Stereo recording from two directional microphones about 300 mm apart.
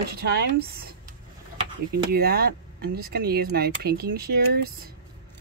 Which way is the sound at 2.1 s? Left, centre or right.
Right.